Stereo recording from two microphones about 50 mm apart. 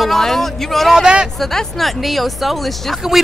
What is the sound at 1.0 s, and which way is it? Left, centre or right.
Speech, centre.